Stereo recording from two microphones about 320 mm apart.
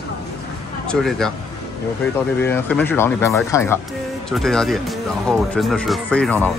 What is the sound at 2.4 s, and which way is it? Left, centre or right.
Speech, centre.